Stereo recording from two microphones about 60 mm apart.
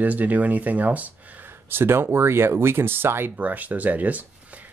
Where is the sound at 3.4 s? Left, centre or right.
Right.